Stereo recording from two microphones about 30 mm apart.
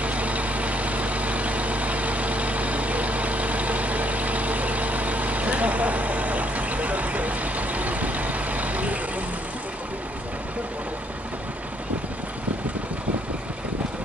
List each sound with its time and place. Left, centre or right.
0.0 s vehicle: right